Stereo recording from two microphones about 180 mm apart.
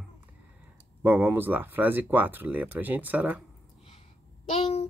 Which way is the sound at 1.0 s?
10° right (ahead or behind).